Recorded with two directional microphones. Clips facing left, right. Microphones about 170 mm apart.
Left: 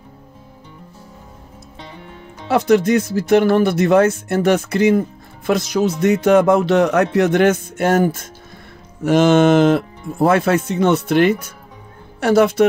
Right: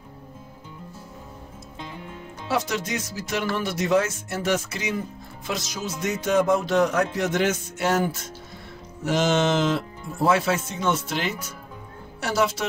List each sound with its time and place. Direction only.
2.4 s music: 60° left (ahead or behind)